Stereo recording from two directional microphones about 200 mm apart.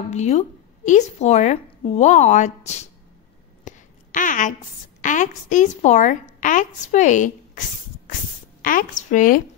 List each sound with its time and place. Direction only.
0.1 s a woman's voice: 35° left (ahead or behind)
3.6 s a sound: 40° left (ahead or behind)
5.0 s a woman's voice: 40° left (ahead or behind)
8.6 s a woman's voice: 40° left (ahead or behind)